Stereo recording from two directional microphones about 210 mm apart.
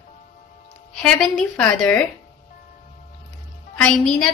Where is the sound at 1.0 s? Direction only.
5° left (ahead or behind).